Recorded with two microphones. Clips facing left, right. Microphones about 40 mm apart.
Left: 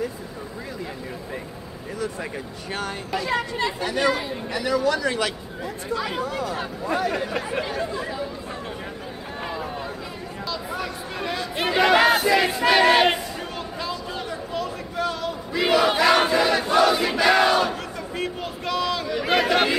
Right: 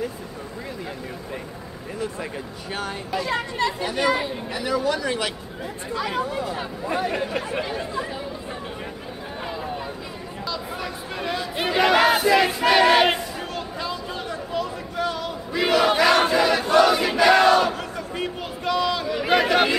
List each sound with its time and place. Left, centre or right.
4.0 s speech: centre
5.9 s speech: centre
6.9 s speech: right
7.2 s speech: centre
10.5 s crowd: centre
14.5 s battle cry: centre